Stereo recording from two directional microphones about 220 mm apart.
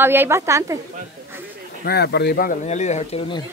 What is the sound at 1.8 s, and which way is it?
A man's voice, 50° left (ahead or behind).